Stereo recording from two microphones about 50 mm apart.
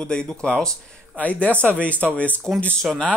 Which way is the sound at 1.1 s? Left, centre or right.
Left.